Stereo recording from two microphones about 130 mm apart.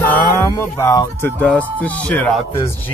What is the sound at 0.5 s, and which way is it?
Speech, 20° left (ahead or behind).